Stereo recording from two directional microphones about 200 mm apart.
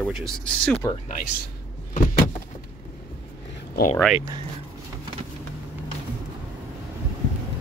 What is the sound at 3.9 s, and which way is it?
Speech, 5° left (ahead or behind).